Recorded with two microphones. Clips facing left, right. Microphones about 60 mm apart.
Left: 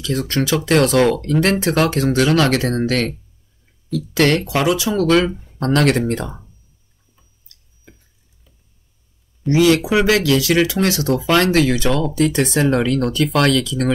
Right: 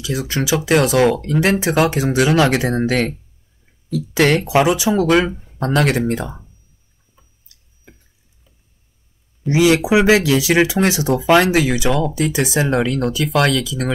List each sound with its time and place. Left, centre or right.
0.0 s speech: centre
5.6 s speech: centre
9.5 s speech: centre